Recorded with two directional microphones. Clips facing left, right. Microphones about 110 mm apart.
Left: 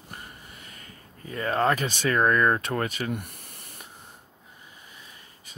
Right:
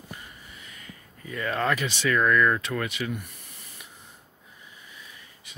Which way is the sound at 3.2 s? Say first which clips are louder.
Left 2 dB; 55° left (ahead or behind).